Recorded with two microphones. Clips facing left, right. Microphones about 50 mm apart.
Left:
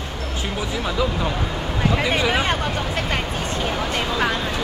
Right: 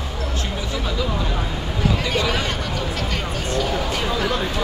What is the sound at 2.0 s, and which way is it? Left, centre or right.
Speech, left.